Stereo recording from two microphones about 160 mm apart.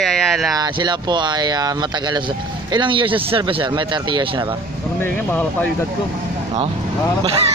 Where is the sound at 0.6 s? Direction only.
25° right (ahead or behind).